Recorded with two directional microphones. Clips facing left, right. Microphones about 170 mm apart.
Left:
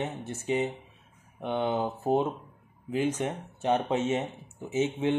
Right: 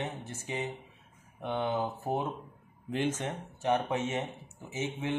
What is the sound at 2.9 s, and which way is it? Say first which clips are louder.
Speech: left 4 dB; 10° left (ahead or behind).